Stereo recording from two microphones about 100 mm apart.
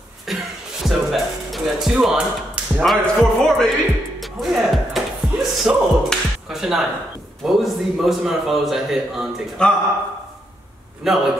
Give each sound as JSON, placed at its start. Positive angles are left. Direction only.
{"t": 0.3, "sound": "a sound", "side_deg": 0}
{"t": 0.8, "sound": "music", "side_deg": 0}
{"t": 2.8, "sound": "a man's voice", "side_deg": 5}
{"t": 4.2, "sound": "music", "side_deg": 0}
{"t": 7.4, "sound": "a man's voice", "side_deg": 0}
{"t": 9.6, "sound": "speech", "side_deg": 10}
{"t": 11.0, "sound": "a man's voice", "side_deg": -5}